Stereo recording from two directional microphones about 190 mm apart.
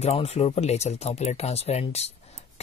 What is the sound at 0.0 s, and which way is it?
Speech, 30° left (ahead or behind).